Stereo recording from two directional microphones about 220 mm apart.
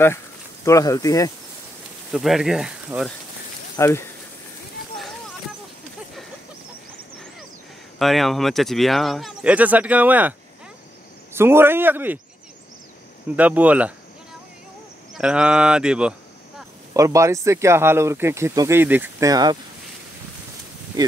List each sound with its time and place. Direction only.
0.7 s speech: 15° left (ahead or behind)
2.1 s speech: centre (ahead or behind)
3.7 s speech: 10° left (ahead or behind)
8.0 s speech: centre (ahead or behind)
11.3 s speech: 10° right (ahead or behind)
13.4 s speech: 5° right (ahead or behind)
15.1 s speech: 5° right (ahead or behind)